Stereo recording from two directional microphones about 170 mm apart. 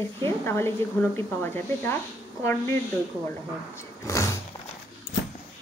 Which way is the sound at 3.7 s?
15° left (ahead or behind).